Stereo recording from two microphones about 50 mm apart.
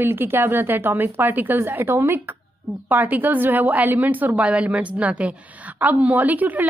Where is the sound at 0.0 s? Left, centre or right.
Right.